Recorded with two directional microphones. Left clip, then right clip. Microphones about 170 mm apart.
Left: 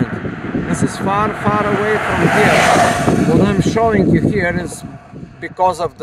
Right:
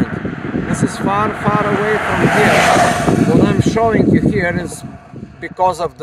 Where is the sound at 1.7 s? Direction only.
90° left.